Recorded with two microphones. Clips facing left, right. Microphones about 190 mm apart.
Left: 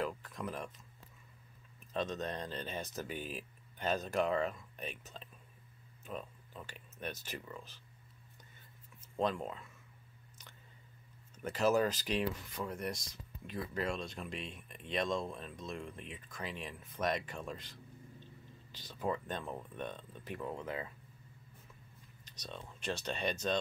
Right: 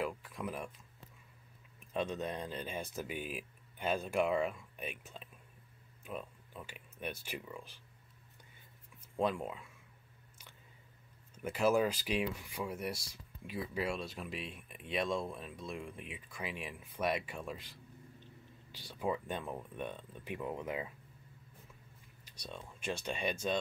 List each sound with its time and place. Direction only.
0.0 s speech: 10° right (ahead or behind)
2.0 s speech: 10° right (ahead or behind)
9.1 s speech: 10° right (ahead or behind)
11.3 s speech: 10° right (ahead or behind)
22.2 s speech: 10° right (ahead or behind)